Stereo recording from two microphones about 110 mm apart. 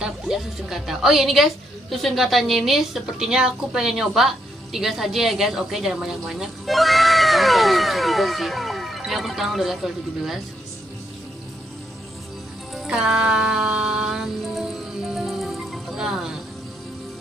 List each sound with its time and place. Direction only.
0.0 s a woman's voice: 5° right (ahead or behind)
12.7 s music: 5° right (ahead or behind)